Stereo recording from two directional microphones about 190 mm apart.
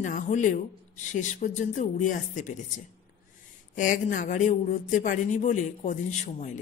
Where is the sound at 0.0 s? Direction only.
40° left (ahead or behind).